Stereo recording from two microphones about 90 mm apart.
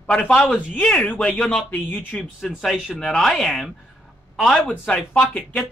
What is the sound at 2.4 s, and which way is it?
Speech, centre (ahead or behind).